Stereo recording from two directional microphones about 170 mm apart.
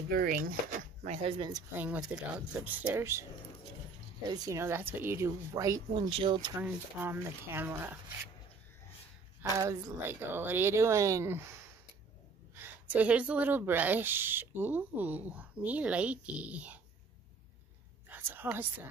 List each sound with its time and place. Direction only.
0.1 s speech: 60° right (ahead or behind); by 1.3 s 40° right (ahead or behind)
1.8 s speech: 5° right (ahead or behind)
4.3 s speech: 20° right (ahead or behind)
6.0 s speech: 30° right (ahead or behind)
6.6 s speech: 10° right (ahead or behind)
9.4 s speech: 20° right (ahead or behind)
12.5 s speech: 10° right (ahead or behind)
18.1 s a sound: 10° right (ahead or behind)